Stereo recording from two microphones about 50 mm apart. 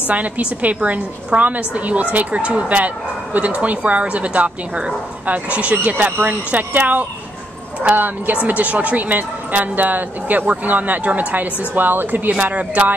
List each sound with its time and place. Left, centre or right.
0.1 s a woman's voice: right